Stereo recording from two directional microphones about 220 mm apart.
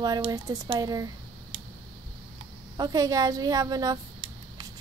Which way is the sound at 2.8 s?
15° right (ahead or behind).